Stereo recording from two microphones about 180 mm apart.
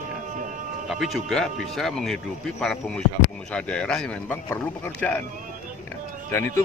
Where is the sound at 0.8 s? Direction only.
Centre (ahead or behind).